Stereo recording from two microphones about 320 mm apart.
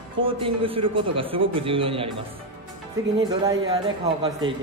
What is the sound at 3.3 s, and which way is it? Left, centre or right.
Speech, centre.